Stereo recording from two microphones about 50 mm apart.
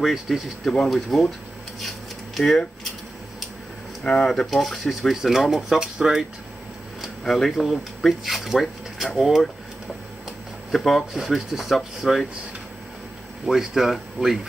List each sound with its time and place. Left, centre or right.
0.0 s speech: centre
1.8 s a sound: centre
4.0 s speech: centre
7.2 s speech: centre
10.7 s speech: centre
11.1 s speech: centre
13.5 s speech: centre